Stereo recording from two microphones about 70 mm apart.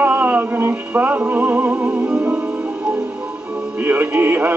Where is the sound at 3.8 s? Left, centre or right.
Right.